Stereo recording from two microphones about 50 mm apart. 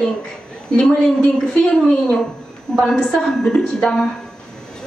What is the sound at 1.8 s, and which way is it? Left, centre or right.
A woman's voice, centre.